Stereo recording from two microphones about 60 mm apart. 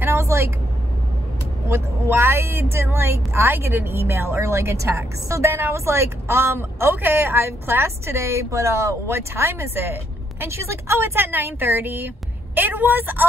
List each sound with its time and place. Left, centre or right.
0.0 s vehicle: right
1.7 s a woman's voice: right
4.4 s a woman's voice: right